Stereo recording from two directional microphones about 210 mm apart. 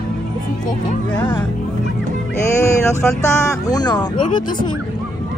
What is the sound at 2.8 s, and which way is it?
Speech, 10° left (ahead or behind).